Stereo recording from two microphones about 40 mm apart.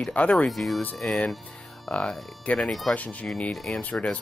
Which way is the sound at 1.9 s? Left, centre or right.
Left.